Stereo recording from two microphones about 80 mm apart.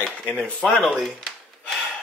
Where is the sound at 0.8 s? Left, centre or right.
Centre.